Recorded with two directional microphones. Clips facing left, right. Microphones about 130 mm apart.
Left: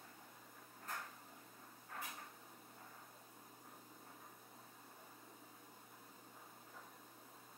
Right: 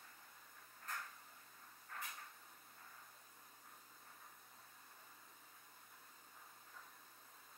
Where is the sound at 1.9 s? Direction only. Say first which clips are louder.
Left 2 dB; 15° left (ahead or behind).